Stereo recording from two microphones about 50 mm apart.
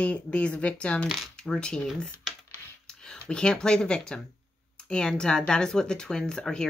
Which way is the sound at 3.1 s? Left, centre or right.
Centre.